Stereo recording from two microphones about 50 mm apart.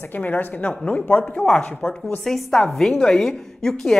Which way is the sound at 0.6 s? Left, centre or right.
Centre.